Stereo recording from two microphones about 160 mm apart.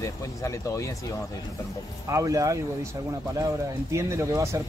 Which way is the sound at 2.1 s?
20° right (ahead or behind).